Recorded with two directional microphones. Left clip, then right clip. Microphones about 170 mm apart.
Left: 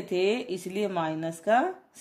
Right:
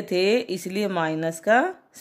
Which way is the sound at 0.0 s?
35° right (ahead or behind).